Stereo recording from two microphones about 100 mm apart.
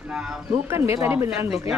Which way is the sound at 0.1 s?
10° right (ahead or behind).